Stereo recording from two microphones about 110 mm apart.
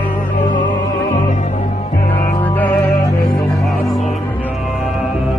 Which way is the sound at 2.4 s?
15° left (ahead or behind).